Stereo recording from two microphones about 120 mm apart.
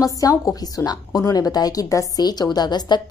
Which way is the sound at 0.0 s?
30° left (ahead or behind).